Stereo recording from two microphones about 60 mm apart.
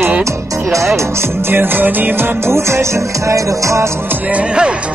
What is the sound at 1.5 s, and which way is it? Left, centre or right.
Music, right.